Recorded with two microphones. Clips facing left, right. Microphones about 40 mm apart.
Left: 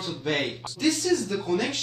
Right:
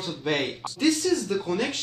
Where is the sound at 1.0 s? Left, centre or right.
Centre.